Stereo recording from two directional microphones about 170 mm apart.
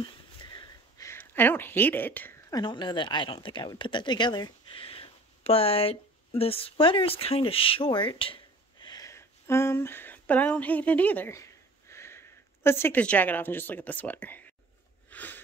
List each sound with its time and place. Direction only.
0.0 s a sound: 25° left (ahead or behind); by 2.3 s 10° left (ahead or behind)
2.5 s speech: 25° left (ahead or behind); by 14.5 s 10° left (ahead or behind)
15.0 s sniff: 10° left (ahead or behind)